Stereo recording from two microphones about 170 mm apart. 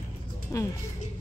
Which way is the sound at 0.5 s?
20° left (ahead or behind).